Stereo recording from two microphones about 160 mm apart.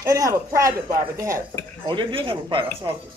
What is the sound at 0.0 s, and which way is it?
Speech, 20° right (ahead or behind).